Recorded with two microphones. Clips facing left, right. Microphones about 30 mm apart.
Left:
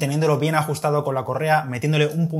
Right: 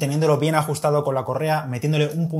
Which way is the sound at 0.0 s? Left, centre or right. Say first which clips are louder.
Right 1 dB; centre.